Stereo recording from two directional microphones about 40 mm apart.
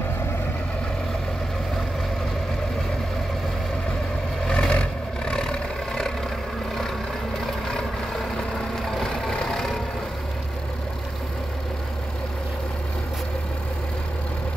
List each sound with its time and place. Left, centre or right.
4.5 s vehicle: left
7.3 s vehicle: centre